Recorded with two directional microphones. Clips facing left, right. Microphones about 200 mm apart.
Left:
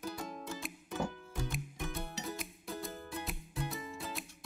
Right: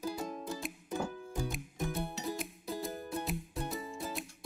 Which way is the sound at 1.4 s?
Centre (ahead or behind).